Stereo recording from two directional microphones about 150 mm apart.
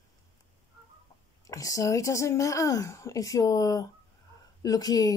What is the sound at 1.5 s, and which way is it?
Speech, 20° left (ahead or behind).